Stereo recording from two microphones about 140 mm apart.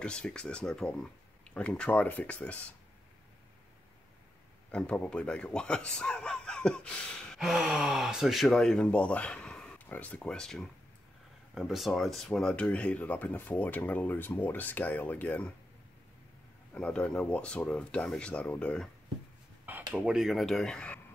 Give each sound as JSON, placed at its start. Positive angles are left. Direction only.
{"t": 0.0, "sound": "speech", "side_deg": 5}
{"t": 4.6, "sound": "speech", "side_deg": 10}
{"t": 16.7, "sound": "speech", "side_deg": 5}
{"t": 19.9, "sound": "speech", "side_deg": -5}